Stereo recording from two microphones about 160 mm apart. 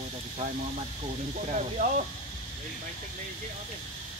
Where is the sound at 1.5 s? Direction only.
55° right (ahead or behind).